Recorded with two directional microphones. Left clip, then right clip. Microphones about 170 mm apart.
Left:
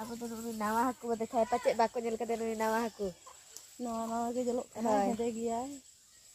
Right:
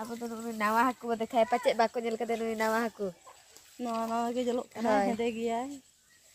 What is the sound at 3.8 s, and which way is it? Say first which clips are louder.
Speech: right 4 dB; 35° right (ahead or behind).